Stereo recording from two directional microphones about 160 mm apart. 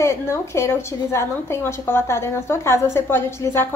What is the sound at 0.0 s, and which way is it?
A woman's voice, 15° left (ahead or behind).